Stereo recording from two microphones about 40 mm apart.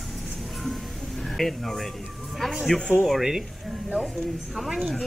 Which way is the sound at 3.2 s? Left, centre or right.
Centre.